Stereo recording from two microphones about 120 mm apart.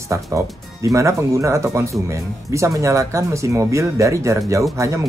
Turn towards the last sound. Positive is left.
turn(degrees=-25)  # may be behind; listen again after turning